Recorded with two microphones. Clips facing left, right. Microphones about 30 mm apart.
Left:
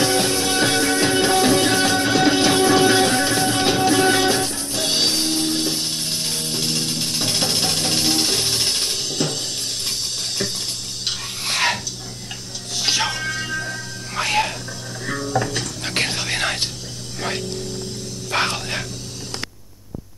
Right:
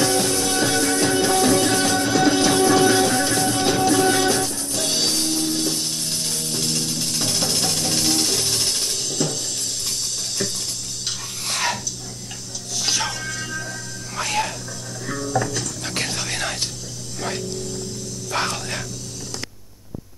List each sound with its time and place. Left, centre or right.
0.0 s music: left
11.1 s a sound: left
12.7 s music: left
15.5 s dishes: left
17.2 s a sound: left
18.3 s music: left